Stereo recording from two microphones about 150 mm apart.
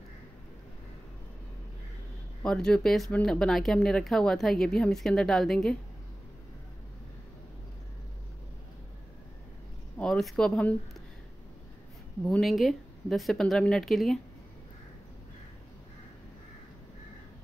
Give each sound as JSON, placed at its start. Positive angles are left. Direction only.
{"t": 2.4, "sound": "speech", "side_deg": 5}
{"t": 9.9, "sound": "speech", "side_deg": 5}
{"t": 12.3, "sound": "speech", "side_deg": 0}